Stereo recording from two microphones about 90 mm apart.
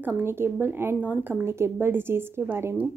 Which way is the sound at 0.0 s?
25° right (ahead or behind).